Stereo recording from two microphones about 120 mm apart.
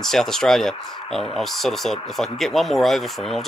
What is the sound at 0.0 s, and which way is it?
Speech, 5° left (ahead or behind).